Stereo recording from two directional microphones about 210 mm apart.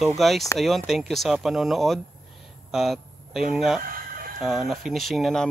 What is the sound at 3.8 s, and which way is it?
Chicken, 45° right (ahead or behind).